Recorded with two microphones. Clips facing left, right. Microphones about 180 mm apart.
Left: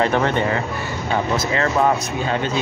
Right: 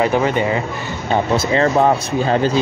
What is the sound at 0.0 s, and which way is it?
Speech, 10° right (ahead or behind).